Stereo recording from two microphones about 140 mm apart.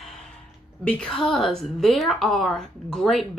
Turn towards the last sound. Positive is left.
turn(degrees=0)  # may be behind; listen again after turning